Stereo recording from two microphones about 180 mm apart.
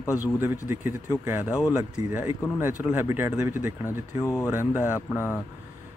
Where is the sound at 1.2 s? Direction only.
10° right (ahead or behind).